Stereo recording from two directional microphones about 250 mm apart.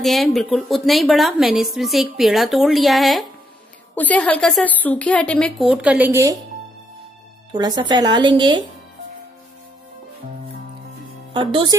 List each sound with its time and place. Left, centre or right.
0.0 s a woman's voice: centre
7.5 s speech: centre
11.3 s speech: centre